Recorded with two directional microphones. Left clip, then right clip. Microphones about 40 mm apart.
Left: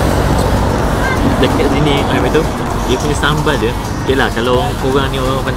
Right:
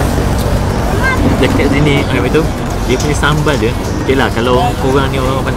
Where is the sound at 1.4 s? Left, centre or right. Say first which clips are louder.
Even; right.